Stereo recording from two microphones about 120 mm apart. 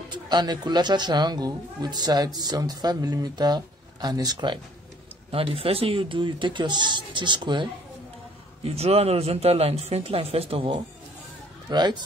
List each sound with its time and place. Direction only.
0.1 s a woman's voice: 35° right (ahead or behind)
5.3 s speech: 50° right (ahead or behind)
8.6 s speech: 60° right (ahead or behind)
11.7 s a woman's voice: 35° right (ahead or behind)